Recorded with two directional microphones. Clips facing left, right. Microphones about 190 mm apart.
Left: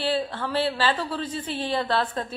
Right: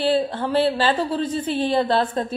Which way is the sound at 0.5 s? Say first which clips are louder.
Right 5 dB; 45° right (ahead or behind).